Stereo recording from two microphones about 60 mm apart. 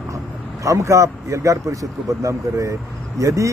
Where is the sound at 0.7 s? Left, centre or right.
Right.